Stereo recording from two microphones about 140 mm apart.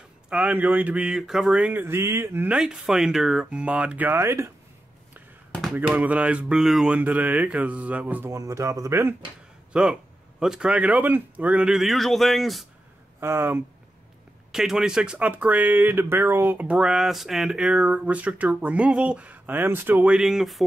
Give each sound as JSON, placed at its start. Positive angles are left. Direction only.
{"t": 0.3, "sound": "speech", "side_deg": -5}
{"t": 5.8, "sound": "speech", "side_deg": -10}
{"t": 9.7, "sound": "speech", "side_deg": -5}
{"t": 13.2, "sound": "speech", "side_deg": -15}
{"t": 14.5, "sound": "speech", "side_deg": -5}